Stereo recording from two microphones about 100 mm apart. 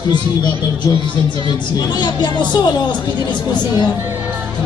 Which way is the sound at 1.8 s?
45° left (ahead or behind).